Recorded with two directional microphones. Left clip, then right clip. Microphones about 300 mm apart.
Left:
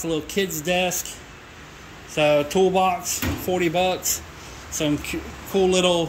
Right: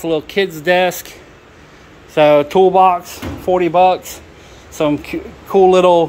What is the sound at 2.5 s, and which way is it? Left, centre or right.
Speech, right.